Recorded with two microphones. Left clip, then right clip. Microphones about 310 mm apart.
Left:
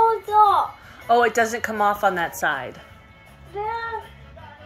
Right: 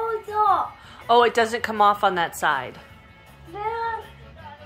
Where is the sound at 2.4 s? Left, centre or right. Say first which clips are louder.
Right 1 dB; centre.